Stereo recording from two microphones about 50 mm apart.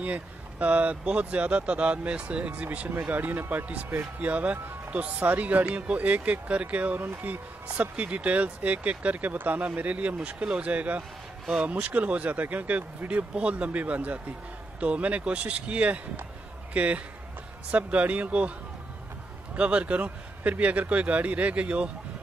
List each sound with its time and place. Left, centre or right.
0.0 s speech: right
2.9 s speech: right
7.0 s speech: right
7.6 s speech: right
19.5 s speech: right